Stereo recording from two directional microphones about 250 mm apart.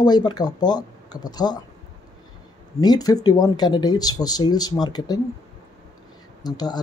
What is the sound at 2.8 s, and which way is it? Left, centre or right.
Speech, centre.